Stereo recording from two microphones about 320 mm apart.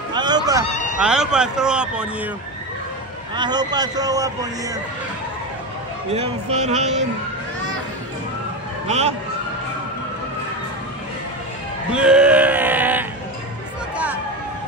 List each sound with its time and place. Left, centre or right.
0.1 s cat: centre
0.7 s cat: left
0.9 s speech: centre
3.3 s a man's voice: centre
6.1 s speech: right
8.8 s a man's voice: centre
11.9 s a sound: centre